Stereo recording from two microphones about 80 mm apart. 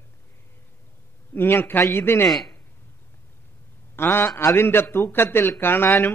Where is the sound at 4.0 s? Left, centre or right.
Left.